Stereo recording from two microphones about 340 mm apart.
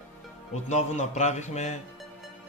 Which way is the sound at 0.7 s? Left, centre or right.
Centre.